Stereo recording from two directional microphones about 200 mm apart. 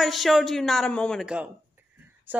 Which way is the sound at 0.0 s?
Centre (ahead or behind).